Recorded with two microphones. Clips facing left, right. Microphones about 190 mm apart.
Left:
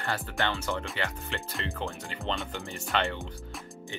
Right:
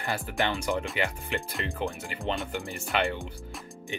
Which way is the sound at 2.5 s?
10° right (ahead or behind).